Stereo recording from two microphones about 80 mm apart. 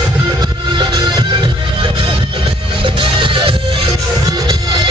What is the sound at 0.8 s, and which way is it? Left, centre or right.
Music, right.